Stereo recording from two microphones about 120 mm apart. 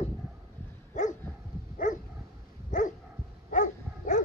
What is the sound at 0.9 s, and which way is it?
Dog, 90° left.